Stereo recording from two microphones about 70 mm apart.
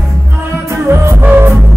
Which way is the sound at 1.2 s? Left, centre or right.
Right.